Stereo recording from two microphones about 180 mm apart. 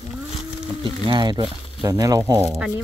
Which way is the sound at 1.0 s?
25° right (ahead or behind).